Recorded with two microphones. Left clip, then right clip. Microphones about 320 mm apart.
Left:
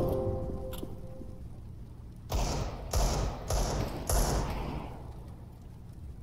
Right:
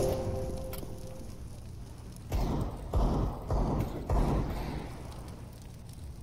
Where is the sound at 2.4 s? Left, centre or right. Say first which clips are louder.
Even; left.